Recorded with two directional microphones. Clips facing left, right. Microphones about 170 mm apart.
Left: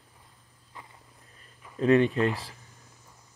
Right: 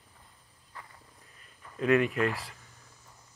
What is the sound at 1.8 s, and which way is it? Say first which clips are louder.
Speech: left 4 dB; 30° left (ahead or behind).